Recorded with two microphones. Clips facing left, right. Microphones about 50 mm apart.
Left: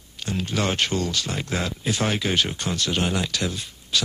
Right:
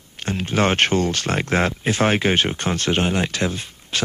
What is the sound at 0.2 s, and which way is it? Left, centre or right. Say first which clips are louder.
Speech: right 5 dB; right.